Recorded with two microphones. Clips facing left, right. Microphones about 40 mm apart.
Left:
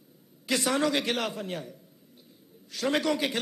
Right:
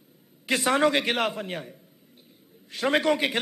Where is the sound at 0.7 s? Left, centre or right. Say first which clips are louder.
Right 5 dB; right.